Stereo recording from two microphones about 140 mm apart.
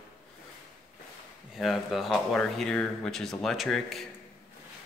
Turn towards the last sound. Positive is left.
turn(degrees=0)  # may be behind; listen again after turning